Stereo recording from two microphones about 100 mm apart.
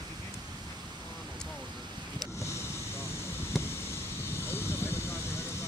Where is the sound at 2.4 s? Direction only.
30° left (ahead or behind).